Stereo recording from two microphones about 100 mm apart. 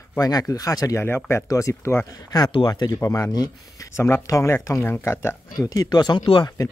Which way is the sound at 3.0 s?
30° left (ahead or behind).